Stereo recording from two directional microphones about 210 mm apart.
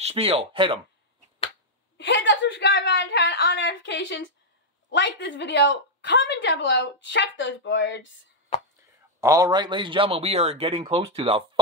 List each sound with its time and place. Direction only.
0.0 s speech: 30° right (ahead or behind)
2.0 s a woman's voice: 60° left (ahead or behind)
9.2 s speech: 15° right (ahead or behind)